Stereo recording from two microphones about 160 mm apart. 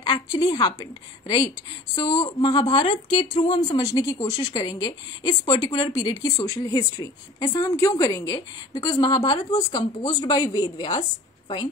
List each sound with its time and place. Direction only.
0.0 s a woman's voice: 25° left (ahead or behind)
3.7 s a woman's voice: 20° left (ahead or behind)